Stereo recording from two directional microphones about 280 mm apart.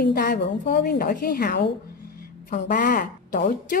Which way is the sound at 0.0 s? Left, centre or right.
Left.